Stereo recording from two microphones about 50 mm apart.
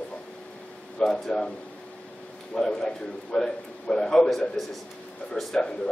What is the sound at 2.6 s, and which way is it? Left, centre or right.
A man's voice, centre.